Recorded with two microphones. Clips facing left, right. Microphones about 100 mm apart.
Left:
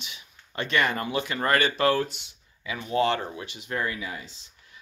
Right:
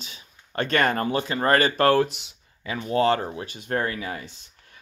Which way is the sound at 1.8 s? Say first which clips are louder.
Right 4 dB; 55° right (ahead or behind).